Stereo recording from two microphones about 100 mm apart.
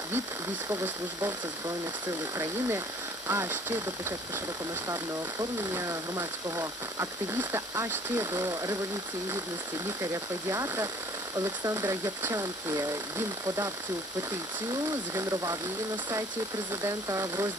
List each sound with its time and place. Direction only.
2.3 s speech: 30° right (ahead or behind)
5.6 s speech: 30° right (ahead or behind)
10.1 s speech: 35° right (ahead or behind)
14.7 s speech: 30° right (ahead or behind)
16.8 s speech: 30° right (ahead or behind)